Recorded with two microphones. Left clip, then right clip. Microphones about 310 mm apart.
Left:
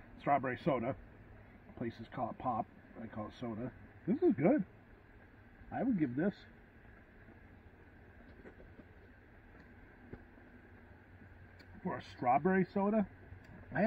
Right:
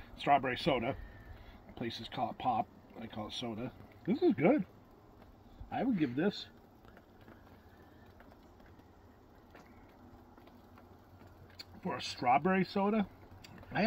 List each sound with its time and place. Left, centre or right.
0.2 s speech: right
5.7 s speech: right
11.5 s speech: right